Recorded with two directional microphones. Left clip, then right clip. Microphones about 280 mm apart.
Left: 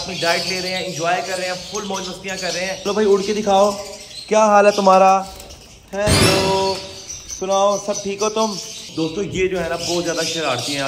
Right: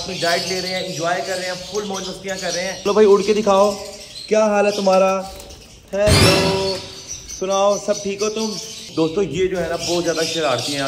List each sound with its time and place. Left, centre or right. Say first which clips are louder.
0.1 s a man's voice: even; centre
4.7 s speech: left 3 dB; left
5.9 s a man's voice: right 1 dB; centre